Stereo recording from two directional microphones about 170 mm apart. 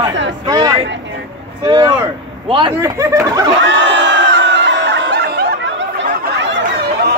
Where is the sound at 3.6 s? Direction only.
90° right.